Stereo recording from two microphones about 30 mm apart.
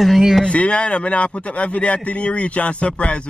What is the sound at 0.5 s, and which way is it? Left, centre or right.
A man's voice, left.